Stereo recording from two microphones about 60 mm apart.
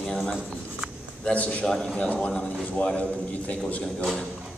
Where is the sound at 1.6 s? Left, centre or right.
Centre.